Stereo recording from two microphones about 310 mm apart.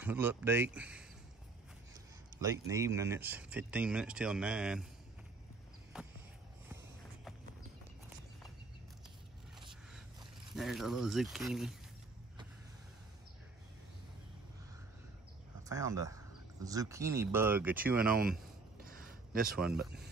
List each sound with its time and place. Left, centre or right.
0.0 s speech: centre
2.3 s speech: centre
10.5 s speech: centre
15.7 s speech: centre
18.0 s speech: right
18.8 s a sound: right
19.7 s speech: centre